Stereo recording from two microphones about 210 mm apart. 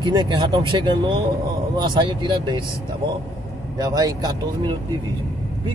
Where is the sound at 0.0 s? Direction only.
20° right (ahead or behind).